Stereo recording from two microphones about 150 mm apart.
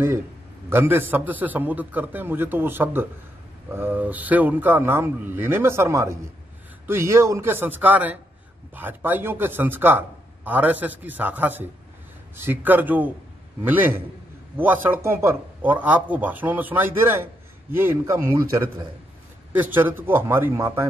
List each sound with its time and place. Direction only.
0.7 s speech: 15° right (ahead or behind)